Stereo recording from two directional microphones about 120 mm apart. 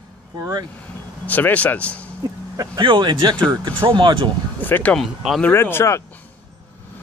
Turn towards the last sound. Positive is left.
turn(degrees=20)  # may be behind; listen again after turning